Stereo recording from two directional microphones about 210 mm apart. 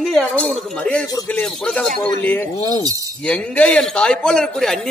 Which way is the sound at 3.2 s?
5° left (ahead or behind).